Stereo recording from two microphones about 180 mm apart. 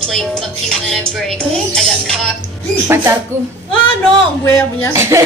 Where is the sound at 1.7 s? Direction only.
5° left (ahead or behind).